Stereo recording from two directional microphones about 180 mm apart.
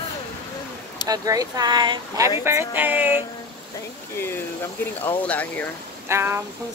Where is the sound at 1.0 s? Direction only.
20° right (ahead or behind).